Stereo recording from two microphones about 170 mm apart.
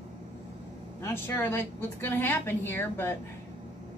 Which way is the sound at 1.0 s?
15° left (ahead or behind).